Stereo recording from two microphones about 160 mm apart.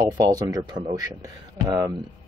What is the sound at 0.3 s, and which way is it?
Speech, 25° right (ahead or behind).